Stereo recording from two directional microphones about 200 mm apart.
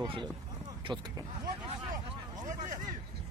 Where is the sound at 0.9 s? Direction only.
Centre (ahead or behind).